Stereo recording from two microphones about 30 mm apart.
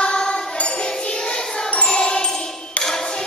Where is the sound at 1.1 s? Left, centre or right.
Left.